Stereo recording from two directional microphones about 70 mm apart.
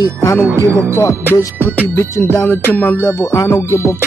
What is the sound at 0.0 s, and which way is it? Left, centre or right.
Music, left.